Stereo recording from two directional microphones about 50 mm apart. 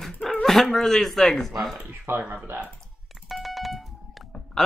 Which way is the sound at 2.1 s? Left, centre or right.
Right.